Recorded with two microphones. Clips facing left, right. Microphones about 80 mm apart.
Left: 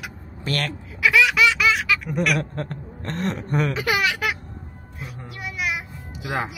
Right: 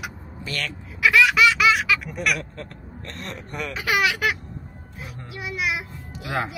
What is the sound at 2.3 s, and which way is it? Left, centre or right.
Speech, left.